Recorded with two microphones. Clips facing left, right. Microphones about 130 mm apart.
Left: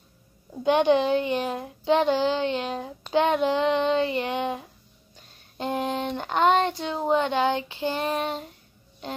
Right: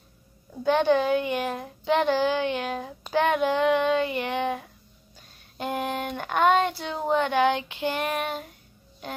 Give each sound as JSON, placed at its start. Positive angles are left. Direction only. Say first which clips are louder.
{"t": 0.5, "sound": "a child's voice", "louder": "left 1 dB", "side_deg": 15}
{"t": 1.1, "sound": "speech", "louder": "left 1 dB", "side_deg": -10}
{"t": 1.4, "sound": "child singing", "louder": "left 1 dB", "side_deg": 20}
{"t": 5.6, "sound": "a sound", "louder": "left 2 dB", "side_deg": 20}
{"t": 6.8, "sound": "speech", "louder": "left 1 dB", "side_deg": 20}